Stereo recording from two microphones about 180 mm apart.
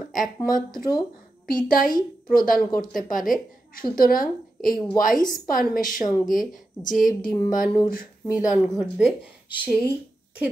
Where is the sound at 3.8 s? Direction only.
50° left (ahead or behind).